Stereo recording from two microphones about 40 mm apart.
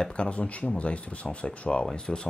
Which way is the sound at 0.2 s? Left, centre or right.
Left.